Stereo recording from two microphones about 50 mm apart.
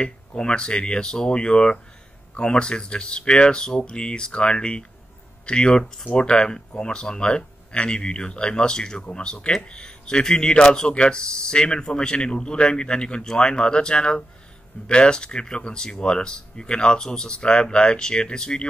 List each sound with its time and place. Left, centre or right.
0.0 s speech: centre